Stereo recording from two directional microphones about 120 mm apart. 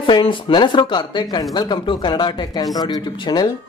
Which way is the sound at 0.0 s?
45° left (ahead or behind).